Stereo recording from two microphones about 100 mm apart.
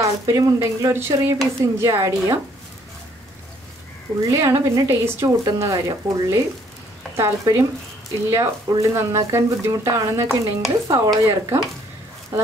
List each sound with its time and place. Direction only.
0.0 s a woman's voice: 30° right (ahead or behind)
4.3 s a woman's voice: 30° right (ahead or behind)